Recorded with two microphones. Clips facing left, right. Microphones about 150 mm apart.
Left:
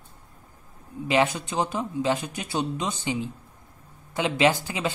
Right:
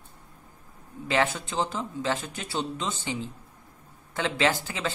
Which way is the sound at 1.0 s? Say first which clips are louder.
Left 3 dB; 15° left (ahead or behind).